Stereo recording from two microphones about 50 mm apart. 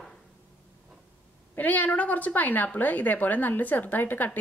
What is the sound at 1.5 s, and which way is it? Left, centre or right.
Speech, left.